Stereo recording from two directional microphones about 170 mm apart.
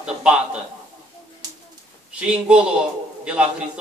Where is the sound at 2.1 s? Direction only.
5° right (ahead or behind).